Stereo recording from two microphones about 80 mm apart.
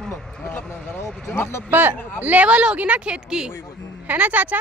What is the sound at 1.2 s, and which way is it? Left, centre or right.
Speech, left.